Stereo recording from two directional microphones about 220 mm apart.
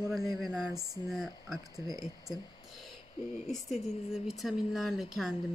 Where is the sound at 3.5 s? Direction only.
Centre (ahead or behind).